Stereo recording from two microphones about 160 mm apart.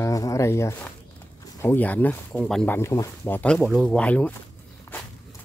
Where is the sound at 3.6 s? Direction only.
5° right (ahead or behind).